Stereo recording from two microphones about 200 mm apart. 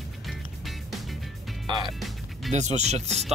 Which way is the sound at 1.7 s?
25° right (ahead or behind).